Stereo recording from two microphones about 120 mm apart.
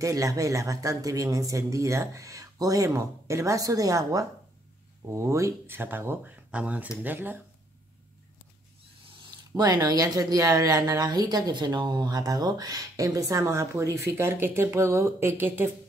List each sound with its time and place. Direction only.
0.0 s speech: 30° right (ahead or behind)
9.6 s speech: 35° right (ahead or behind); by 15.7 s 20° right (ahead or behind)